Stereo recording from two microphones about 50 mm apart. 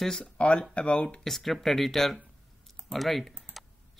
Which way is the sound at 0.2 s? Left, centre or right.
Left.